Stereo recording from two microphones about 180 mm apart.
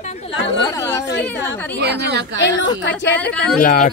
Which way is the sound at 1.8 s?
65° right (ahead or behind).